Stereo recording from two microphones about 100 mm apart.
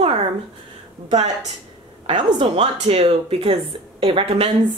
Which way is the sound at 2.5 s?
80° right.